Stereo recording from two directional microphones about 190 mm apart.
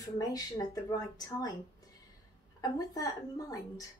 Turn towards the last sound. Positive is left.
turn(degrees=20)  # may be behind; listen again after turning